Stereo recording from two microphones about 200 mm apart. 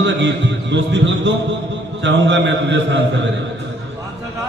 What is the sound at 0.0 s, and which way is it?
A man's voice, 65° right (ahead or behind).